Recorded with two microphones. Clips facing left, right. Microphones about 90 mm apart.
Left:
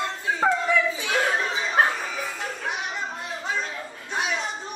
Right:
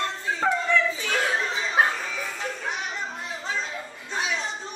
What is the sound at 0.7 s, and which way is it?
Children playing, 10° left (ahead or behind).